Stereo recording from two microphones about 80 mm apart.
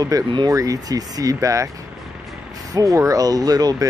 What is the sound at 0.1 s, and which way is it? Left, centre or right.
Speech, right.